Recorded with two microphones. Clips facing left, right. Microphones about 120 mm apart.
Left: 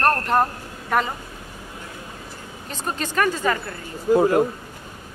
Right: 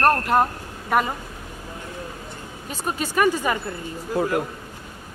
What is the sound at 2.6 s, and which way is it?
Speech, 10° right (ahead or behind).